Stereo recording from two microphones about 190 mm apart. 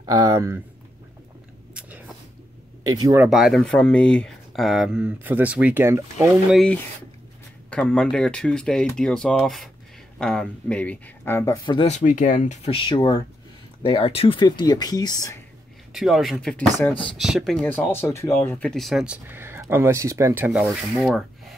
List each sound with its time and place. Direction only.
0.0 s speech: 20° right (ahead or behind)
1.7 s a sound: 5° right (ahead or behind)
2.9 s speech: 15° right (ahead or behind)
3.3 s speech: centre (ahead or behind)
6.5 s speech: 5° left (ahead or behind); by 11.9 s 25° left (ahead or behind)
11.9 s speech: 40° left (ahead or behind); by 15.4 s 15° left (ahead or behind)
15.9 s speech: centre (ahead or behind)